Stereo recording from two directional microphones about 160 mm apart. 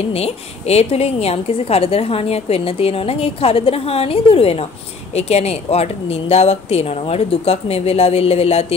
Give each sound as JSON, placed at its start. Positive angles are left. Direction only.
{"t": 0.1, "sound": "a woman's voice", "side_deg": 40}